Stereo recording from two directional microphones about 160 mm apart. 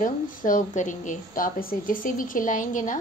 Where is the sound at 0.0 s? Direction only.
55° left (ahead or behind).